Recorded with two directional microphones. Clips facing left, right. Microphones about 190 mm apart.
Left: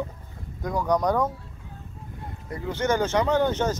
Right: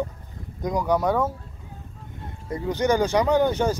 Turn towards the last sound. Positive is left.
turn(degrees=-10)  # may be behind; listen again after turning